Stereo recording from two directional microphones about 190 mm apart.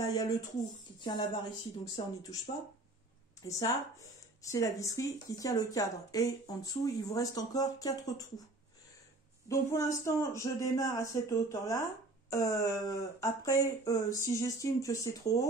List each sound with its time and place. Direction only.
0.0 s speech: 20° left (ahead or behind)
3.4 s speech: 20° left (ahead or behind)
9.5 s speech: 15° left (ahead or behind)